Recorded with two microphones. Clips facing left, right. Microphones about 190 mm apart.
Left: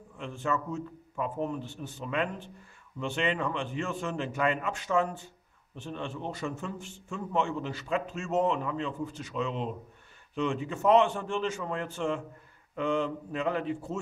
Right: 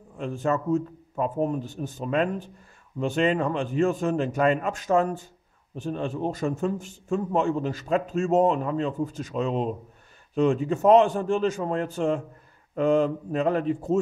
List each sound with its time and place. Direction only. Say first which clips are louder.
0.2 s a man's voice: right 6 dB; 40° right (ahead or behind)